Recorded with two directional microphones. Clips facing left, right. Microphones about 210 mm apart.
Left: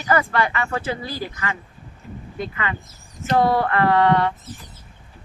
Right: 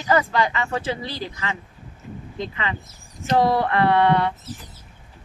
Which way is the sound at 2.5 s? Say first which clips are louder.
Left 1 dB; 20° right (ahead or behind).